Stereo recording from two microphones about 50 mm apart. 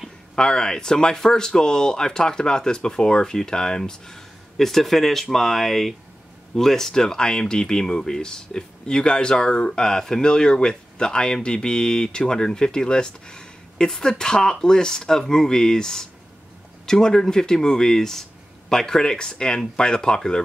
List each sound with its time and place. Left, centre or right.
0.4 s speech: centre